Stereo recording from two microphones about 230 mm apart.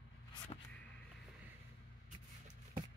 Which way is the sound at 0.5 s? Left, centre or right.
Left.